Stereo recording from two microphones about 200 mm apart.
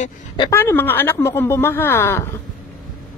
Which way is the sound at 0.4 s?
15° left (ahead or behind).